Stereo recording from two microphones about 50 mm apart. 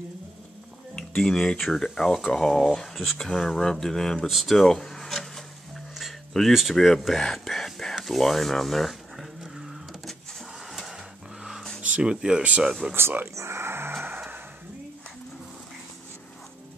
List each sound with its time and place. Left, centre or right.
0.9 s speech: centre
4.3 s speech: centre
7.3 s whispering: centre
8.0 s a sound: centre
12.0 s speech: centre
12.9 s speech: right
13.3 s a sound: right